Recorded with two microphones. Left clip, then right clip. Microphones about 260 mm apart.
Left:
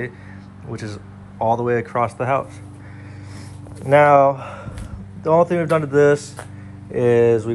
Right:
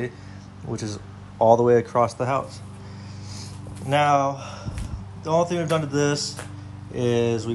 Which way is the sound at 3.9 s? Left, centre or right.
Centre.